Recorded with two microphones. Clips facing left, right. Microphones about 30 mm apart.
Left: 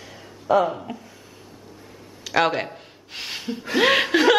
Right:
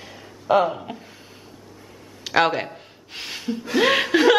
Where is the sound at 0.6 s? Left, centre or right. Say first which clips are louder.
Right 1 dB; centre.